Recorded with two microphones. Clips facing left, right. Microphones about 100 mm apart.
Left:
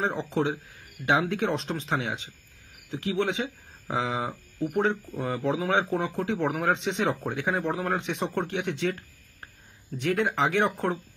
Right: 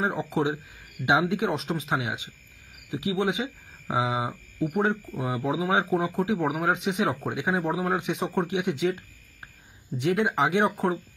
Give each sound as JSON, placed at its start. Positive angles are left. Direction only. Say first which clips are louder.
{"t": 0.0, "sound": "speech", "louder": "right 1 dB", "side_deg": -10}
{"t": 9.9, "sound": "speech", "louder": "right 2 dB", "side_deg": -15}